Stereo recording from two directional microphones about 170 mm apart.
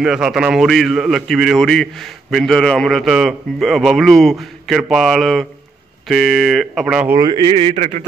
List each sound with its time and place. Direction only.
0.0 s a man's voice: 5° right (ahead or behind)
7.2 s a man's voice: 25° right (ahead or behind); by 8.0 s 40° right (ahead or behind)